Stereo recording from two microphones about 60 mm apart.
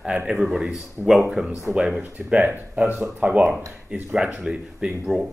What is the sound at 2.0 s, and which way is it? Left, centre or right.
Speech, right.